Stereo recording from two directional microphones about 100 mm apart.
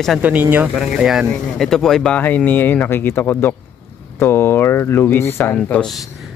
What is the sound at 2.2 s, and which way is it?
Speech, 20° left (ahead or behind).